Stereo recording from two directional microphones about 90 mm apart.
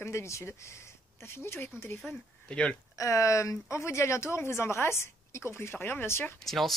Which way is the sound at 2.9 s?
35° left (ahead or behind).